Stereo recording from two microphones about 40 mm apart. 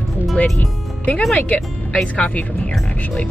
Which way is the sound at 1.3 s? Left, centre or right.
Left.